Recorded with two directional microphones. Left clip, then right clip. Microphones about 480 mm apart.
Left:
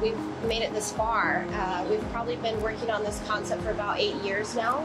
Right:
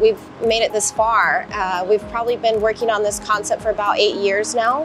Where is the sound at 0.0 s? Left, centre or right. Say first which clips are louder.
Right 12 dB; right.